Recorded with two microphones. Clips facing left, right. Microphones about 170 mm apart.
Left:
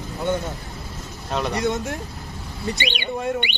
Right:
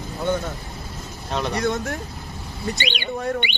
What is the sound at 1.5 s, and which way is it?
Speech, 20° left (ahead or behind).